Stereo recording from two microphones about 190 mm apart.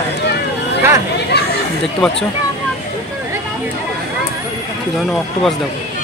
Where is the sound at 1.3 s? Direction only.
60° left (ahead or behind).